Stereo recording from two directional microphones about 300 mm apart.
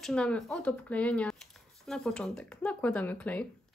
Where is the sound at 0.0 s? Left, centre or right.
Centre.